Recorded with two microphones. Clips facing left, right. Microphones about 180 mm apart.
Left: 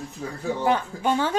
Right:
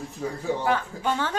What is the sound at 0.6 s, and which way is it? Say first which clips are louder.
Speech: left 5 dB; 15° left (ahead or behind).